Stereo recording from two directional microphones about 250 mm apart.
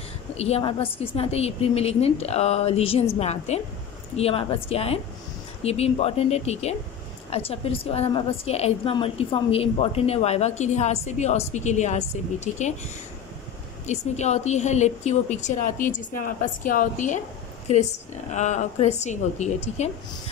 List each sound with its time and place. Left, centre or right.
0.4 s a woman's voice: left